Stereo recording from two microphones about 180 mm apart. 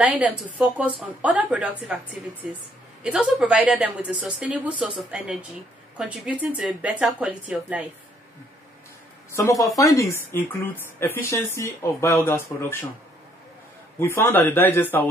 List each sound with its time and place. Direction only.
0.0 s speech: 5° right (ahead or behind)
3.0 s speech: 5° right (ahead or behind)
5.9 s speech: 5° right (ahead or behind)
9.3 s speech: 15° left (ahead or behind)
13.9 s speech: 15° left (ahead or behind)